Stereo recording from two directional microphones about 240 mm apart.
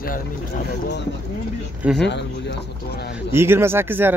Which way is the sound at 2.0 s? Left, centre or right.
Left.